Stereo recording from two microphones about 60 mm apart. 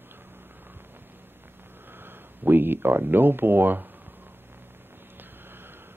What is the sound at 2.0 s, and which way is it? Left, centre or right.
Speech, right.